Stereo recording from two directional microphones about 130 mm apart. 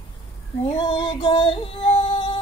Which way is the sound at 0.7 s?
40° left (ahead or behind).